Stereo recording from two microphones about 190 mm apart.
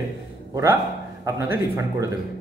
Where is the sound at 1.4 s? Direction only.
10° right (ahead or behind).